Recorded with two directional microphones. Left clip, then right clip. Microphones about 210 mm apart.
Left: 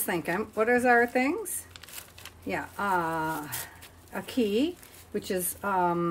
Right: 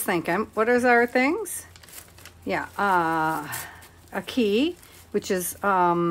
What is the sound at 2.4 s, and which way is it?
Speech, 20° right (ahead or behind).